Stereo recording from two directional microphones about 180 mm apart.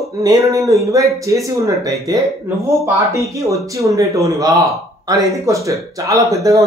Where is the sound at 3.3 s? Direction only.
15° right (ahead or behind).